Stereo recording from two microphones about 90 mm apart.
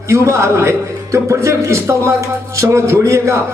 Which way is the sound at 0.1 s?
35° right (ahead or behind).